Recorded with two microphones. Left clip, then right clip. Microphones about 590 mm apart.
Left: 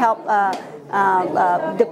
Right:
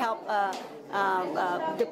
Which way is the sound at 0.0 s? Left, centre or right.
Left.